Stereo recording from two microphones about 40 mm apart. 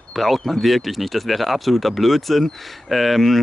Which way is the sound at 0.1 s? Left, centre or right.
Centre.